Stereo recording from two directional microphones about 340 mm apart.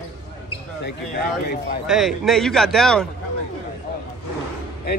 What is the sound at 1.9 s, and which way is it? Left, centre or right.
A man's voice, centre.